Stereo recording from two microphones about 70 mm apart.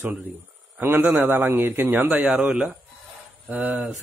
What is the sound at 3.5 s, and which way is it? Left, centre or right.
Speech, right.